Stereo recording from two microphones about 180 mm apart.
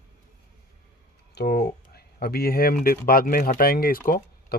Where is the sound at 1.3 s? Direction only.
60° left (ahead or behind).